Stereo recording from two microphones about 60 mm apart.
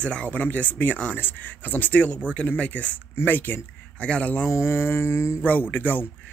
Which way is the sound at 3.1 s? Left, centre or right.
Left.